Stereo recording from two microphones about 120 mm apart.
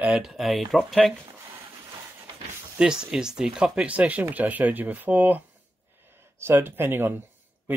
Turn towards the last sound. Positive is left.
turn(degrees=-15)  # may be behind; listen again after turning